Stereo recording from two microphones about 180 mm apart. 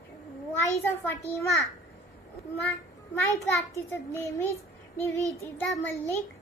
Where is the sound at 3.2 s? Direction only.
10° left (ahead or behind).